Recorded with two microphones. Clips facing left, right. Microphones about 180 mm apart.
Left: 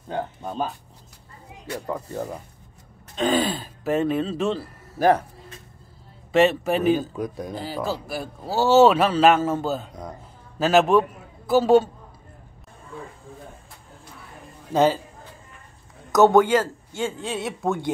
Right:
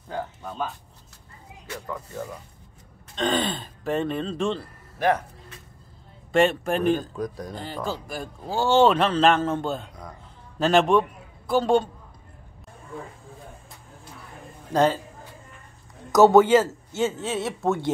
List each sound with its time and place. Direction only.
0.1 s speech: 30° left (ahead or behind)
3.2 s speech: 5° left (ahead or behind)
4.9 s speech: 35° left (ahead or behind)
6.3 s a man's voice: 5° left (ahead or behind)
14.7 s a man's voice: 5° left (ahead or behind)
16.1 s speech: centre (ahead or behind)